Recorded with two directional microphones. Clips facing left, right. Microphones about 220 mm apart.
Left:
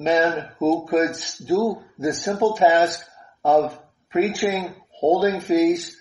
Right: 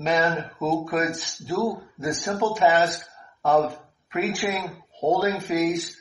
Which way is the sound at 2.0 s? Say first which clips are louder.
Left 5 dB; 20° left (ahead or behind).